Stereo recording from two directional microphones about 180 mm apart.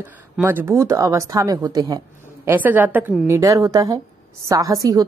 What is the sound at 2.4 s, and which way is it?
A woman's voice, 10° right (ahead or behind).